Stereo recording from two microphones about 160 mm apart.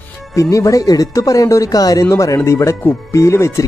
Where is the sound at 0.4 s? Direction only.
20° left (ahead or behind).